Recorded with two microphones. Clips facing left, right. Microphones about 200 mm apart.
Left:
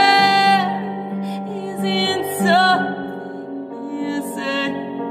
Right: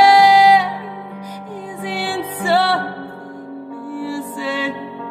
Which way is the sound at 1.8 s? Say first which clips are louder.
Left 4 dB; 10° right (ahead or behind).